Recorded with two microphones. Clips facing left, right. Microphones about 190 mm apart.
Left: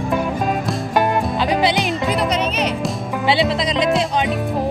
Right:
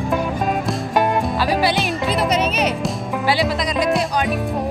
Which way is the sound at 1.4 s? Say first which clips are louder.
Left 2 dB; 20° left (ahead or behind).